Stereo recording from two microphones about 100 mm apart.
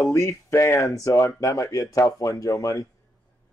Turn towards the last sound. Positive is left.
turn(degrees=35)  # may be behind; listen again after turning